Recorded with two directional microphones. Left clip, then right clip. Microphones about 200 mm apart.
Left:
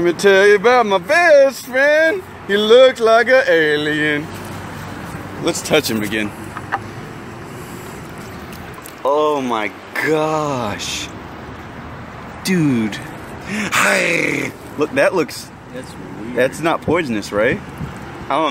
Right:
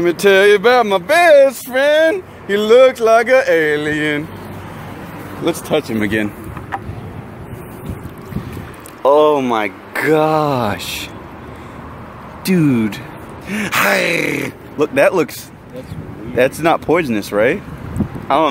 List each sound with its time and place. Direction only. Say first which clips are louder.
0.0 s speech: right 1 dB; 5° right (ahead or behind)
5.7 s speech: left 4 dB; 5° left (ahead or behind)
9.0 s speech: right 5 dB; 25° right (ahead or behind)
12.4 s speech: right 2 dB; 10° right (ahead or behind)
16.3 s speech: right 3 dB; 10° right (ahead or behind)